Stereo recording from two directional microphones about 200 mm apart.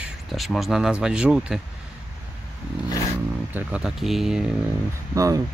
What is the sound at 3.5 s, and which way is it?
Speech, 5° right (ahead or behind).